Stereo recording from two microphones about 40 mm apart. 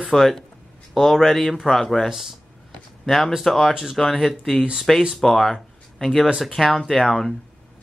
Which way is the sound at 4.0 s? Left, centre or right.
Centre.